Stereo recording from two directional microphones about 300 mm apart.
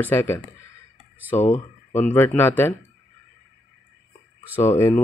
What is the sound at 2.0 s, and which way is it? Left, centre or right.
Speech, centre.